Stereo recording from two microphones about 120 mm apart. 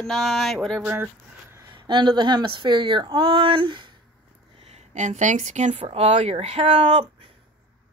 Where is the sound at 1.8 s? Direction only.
40° right (ahead or behind).